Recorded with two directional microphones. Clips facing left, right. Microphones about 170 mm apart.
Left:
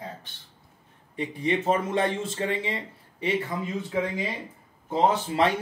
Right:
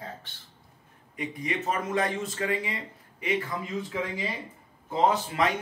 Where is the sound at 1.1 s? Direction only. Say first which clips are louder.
Left 5 dB; 30° left (ahead or behind).